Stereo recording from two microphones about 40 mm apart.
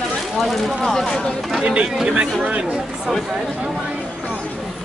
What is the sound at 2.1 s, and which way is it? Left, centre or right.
Speech, right.